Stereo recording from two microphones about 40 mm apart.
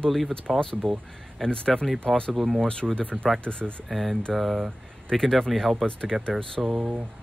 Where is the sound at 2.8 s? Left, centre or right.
Centre.